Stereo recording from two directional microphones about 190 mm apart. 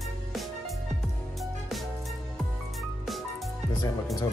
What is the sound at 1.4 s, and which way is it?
Music, centre (ahead or behind).